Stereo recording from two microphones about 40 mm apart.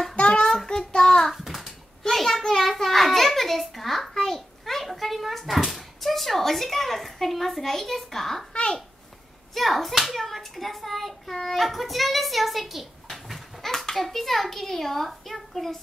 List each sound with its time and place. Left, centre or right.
0.1 s child singing: left
0.4 s child singing: centre
1.3 s a sound: centre
5.6 s a child's voice: centre
9.5 s a child's voice: centre